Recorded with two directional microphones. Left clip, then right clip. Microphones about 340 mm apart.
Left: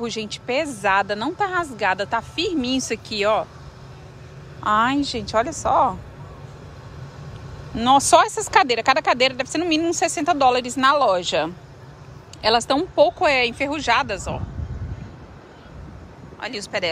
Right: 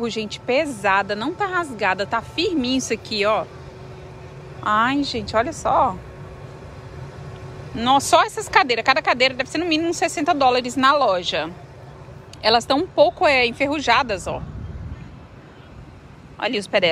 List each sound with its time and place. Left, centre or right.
0.0 s speech: centre
4.6 s speech: centre
7.7 s speech: centre
16.3 s speech: centre